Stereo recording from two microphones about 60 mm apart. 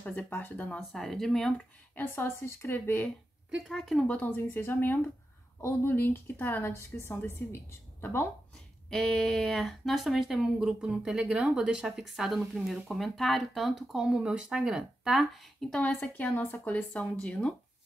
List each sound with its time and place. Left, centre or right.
0.0 s a woman's voice: left
0.7 s speech: centre
2.0 s a woman's voice: left
2.7 s a woman's voice: left
3.6 s speech: centre
4.4 s a woman's voice: left
8.9 s speech: centre
15.8 s a woman's voice: left